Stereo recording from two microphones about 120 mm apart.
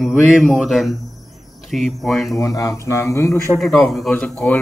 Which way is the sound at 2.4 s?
25° left (ahead or behind).